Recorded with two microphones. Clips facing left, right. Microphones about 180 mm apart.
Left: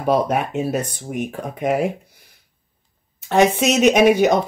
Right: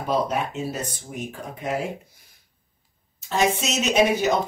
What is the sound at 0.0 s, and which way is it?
Speech, 60° left (ahead or behind).